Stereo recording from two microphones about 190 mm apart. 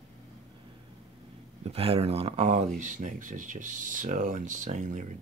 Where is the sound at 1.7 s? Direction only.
30° right (ahead or behind).